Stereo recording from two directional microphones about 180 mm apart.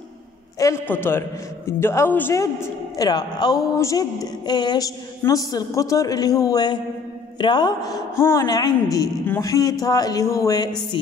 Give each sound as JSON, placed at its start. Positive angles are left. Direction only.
{"t": 0.6, "sound": "a woman's voice", "side_deg": 15}